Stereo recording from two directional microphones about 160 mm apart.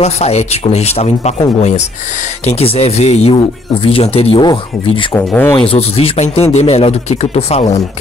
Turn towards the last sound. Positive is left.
turn(degrees=40)  # may be behind; listen again after turning